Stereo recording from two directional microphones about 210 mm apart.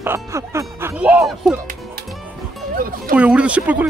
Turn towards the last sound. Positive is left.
turn(degrees=-5)  # may be behind; listen again after turning